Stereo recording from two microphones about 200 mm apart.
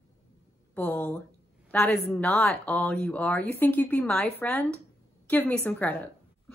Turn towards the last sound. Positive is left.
turn(degrees=10)  # may be behind; listen again after turning